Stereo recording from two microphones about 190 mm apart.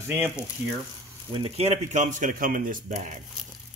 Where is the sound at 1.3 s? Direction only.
30° right (ahead or behind).